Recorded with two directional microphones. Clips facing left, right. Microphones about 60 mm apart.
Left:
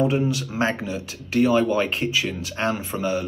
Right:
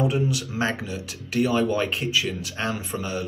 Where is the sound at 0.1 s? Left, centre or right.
Left.